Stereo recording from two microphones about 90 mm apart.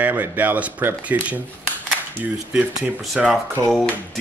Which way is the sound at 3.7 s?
5° left (ahead or behind).